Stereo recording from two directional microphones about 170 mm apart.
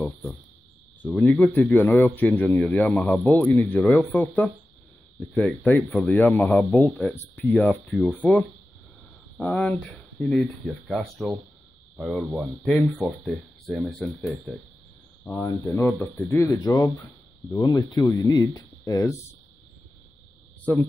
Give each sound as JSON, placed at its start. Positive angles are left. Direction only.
{"t": 0.0, "sound": "speech", "side_deg": 10}
{"t": 10.9, "sound": "speech", "side_deg": 0}
{"t": 15.4, "sound": "speech", "side_deg": 15}
{"t": 20.7, "sound": "speech", "side_deg": 10}